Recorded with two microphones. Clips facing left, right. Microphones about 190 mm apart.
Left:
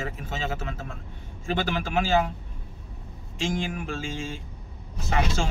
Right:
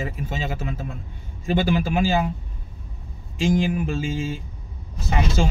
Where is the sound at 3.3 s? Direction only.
5° right (ahead or behind).